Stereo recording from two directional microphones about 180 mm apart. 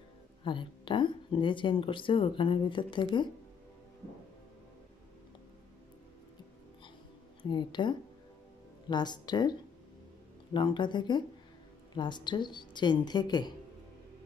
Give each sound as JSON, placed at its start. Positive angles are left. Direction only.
{"t": 0.4, "sound": "speech", "side_deg": 25}
{"t": 7.4, "sound": "speech", "side_deg": 25}